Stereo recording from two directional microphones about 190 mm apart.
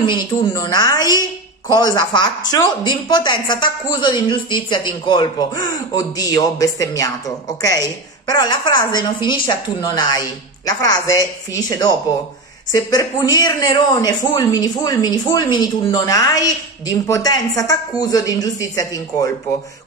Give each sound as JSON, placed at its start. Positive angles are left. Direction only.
{"t": 0.0, "sound": "a woman's voice", "side_deg": 25}